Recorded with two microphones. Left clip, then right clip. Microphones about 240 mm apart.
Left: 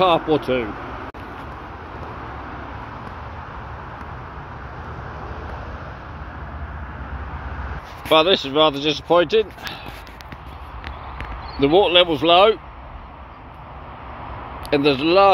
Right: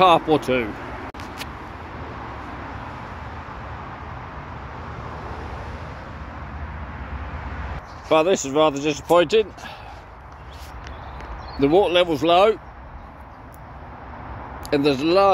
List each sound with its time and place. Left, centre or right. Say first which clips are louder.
0.0 s speech: right 1 dB; centre
8.1 s speech: left 2 dB; centre
8.7 s speech: left 2 dB; right
9.1 s speech: even; centre
11.6 s speech: left 2 dB; centre
14.7 s speech: left 2 dB; centre